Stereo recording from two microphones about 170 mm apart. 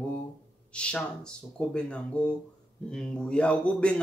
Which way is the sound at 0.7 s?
5° left (ahead or behind).